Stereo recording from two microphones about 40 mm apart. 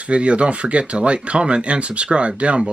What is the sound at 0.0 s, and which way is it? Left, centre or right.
Speech, right.